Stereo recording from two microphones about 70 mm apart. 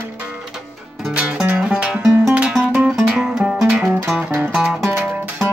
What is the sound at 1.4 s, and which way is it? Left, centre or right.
Music, right.